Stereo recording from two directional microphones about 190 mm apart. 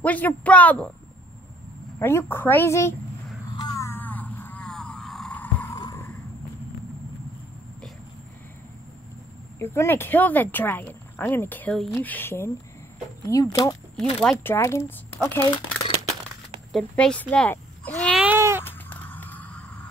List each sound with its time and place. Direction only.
0.0 s speech: 10° left (ahead or behind)
2.0 s speech: 15° left (ahead or behind)
3.5 s a sound: 20° left (ahead or behind)
9.6 s speech: 15° left (ahead or behind)
14.2 s speech: 10° left (ahead or behind)
16.7 s speech: 5° left (ahead or behind)
18.2 s baby cry: 10° right (ahead or behind)
18.6 s a sound: 10° left (ahead or behind)